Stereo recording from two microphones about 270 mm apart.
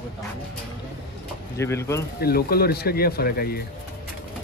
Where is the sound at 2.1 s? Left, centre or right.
Left.